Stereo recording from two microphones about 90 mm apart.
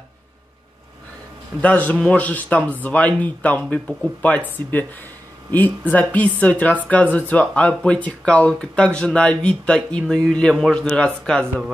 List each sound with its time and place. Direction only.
1.6 s speech: 15° left (ahead or behind)
5.5 s speech: 20° left (ahead or behind)